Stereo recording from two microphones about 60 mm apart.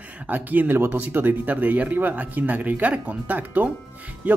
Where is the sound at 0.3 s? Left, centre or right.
Right.